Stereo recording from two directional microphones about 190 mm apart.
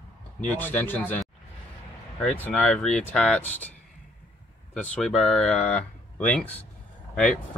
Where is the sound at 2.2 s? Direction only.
10° left (ahead or behind).